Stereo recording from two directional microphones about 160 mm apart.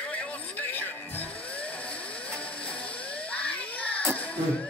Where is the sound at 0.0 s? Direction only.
10° left (ahead or behind).